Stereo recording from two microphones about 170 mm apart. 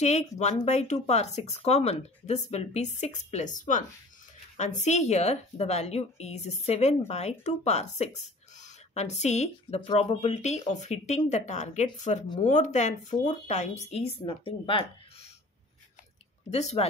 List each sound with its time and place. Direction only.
0.4 s speech: 40° left (ahead or behind)
16.4 s speech: 40° left (ahead or behind)